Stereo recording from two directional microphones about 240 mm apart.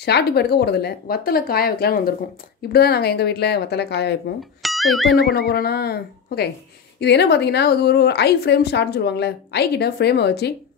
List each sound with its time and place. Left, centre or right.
0.0 s a woman's voice: left
4.6 s music: centre
5.1 s a woman's voice: left